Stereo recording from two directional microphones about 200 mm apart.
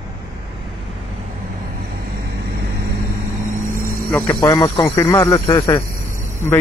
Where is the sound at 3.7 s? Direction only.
45° right (ahead or behind).